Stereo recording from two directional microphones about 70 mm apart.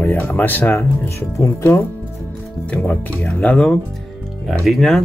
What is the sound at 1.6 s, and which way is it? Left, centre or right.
Speech, left.